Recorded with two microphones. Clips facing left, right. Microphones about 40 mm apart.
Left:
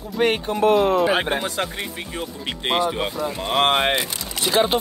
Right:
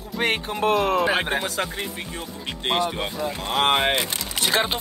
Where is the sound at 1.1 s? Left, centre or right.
Centre.